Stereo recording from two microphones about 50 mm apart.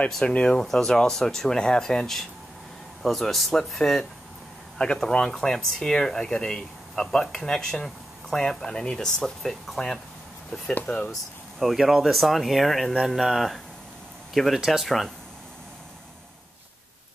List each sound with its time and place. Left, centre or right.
0.2 s speech: left
0.6 s speech: centre
4.7 s speech: left; by 9.9 s centre
10.9 s speech: left
11.6 s speech: centre